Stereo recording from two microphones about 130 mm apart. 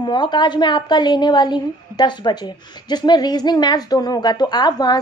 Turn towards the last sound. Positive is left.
turn(degrees=30)  # may be behind; listen again after turning